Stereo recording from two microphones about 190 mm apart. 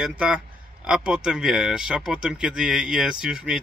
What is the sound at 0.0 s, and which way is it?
Speech, 5° right (ahead or behind).